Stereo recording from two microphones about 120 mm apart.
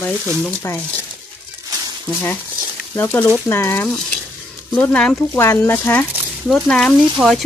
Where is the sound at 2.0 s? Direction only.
15° left (ahead or behind).